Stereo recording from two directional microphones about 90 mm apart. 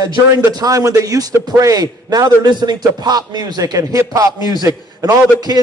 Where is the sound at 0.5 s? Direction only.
45° right (ahead or behind).